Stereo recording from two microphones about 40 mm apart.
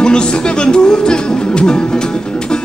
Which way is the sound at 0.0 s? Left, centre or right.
Left.